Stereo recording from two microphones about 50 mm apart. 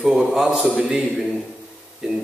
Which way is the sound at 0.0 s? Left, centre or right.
Centre.